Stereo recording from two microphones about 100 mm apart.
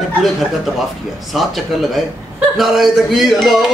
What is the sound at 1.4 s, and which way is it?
A man's voice, centre (ahead or behind).